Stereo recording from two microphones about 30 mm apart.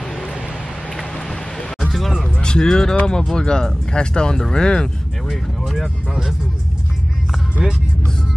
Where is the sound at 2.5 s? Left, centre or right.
Left.